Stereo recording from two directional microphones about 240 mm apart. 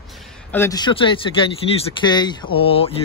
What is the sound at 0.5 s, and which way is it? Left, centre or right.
Speech, centre.